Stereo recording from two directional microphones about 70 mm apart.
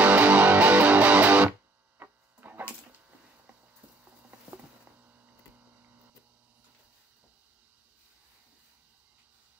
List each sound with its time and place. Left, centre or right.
0.0 s music: right
2.0 s hum: right
4.9 s hum: right